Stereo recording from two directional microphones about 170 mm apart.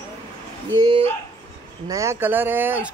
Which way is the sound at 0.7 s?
30° right (ahead or behind).